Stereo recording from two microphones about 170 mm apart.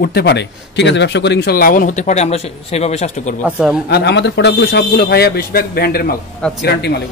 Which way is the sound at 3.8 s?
90° left.